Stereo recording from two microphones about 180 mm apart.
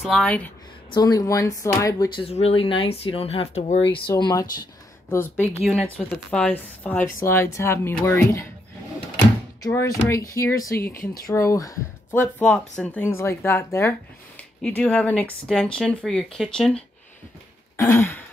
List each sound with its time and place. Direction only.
0.0 s speech: 5° left (ahead or behind)
0.9 s speech: 20° left (ahead or behind)
2.2 s speech: 35° left (ahead or behind)
4.1 s speech: 20° left (ahead or behind)
9.7 s speech: 15° left (ahead or behind)
17.7 s speech: 15° left (ahead or behind)